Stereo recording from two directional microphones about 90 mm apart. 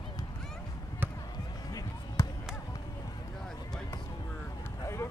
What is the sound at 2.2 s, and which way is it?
Basketball bounce, 35° left (ahead or behind).